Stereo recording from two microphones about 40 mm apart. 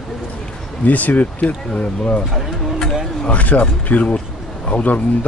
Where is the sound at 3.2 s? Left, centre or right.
Left.